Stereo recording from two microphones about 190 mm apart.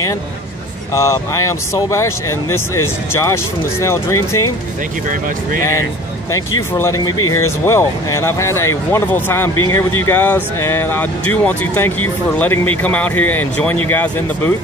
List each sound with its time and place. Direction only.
0.9 s speech: 15° left (ahead or behind)
5.6 s speech: 15° left (ahead or behind)